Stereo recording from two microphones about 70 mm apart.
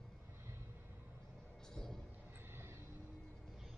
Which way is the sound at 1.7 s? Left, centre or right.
Centre.